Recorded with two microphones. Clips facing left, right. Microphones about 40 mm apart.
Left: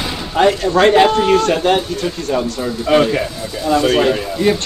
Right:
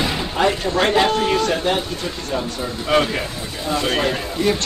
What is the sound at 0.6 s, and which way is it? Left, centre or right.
Speech, left.